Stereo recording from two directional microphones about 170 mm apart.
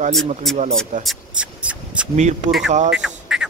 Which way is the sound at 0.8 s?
5° right (ahead or behind).